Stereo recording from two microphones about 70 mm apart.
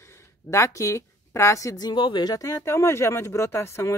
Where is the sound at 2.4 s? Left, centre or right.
Left.